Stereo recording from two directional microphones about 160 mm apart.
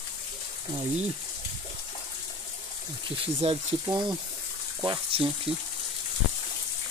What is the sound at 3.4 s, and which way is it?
Speech, 40° right (ahead or behind).